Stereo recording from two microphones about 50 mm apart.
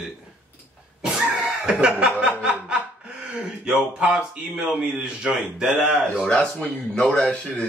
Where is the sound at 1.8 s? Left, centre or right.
Right.